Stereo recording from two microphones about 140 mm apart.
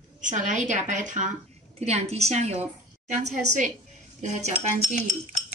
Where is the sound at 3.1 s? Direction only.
60° right (ahead or behind).